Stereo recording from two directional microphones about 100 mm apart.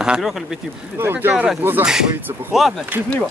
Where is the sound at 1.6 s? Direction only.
20° right (ahead or behind).